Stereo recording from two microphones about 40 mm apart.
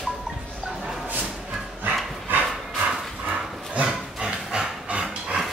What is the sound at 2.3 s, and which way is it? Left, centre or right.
Horse, right.